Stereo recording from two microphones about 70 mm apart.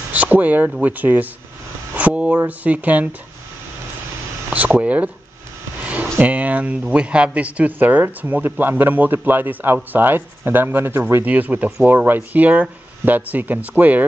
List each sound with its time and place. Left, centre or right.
0.1 s speech: right
4.5 s speech: centre
5.9 s a sound: right
6.9 s speech: centre; by 11.2 s right
11.2 s speech: right